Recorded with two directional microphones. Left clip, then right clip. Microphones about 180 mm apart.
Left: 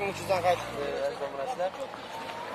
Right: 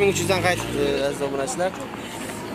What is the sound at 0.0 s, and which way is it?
Speech, 5° right (ahead or behind).